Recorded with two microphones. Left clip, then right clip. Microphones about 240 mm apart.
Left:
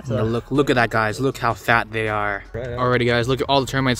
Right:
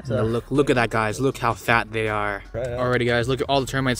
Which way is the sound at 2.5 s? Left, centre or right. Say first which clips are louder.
Right 1 dB; right.